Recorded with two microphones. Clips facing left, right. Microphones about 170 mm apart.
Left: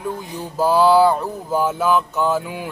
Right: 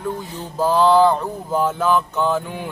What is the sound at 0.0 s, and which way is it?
Speech, 10° left (ahead or behind).